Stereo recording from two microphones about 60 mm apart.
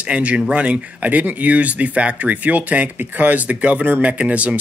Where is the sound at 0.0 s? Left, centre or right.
Right.